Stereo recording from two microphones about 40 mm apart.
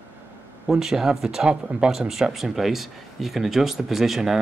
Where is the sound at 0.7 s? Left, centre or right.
Centre.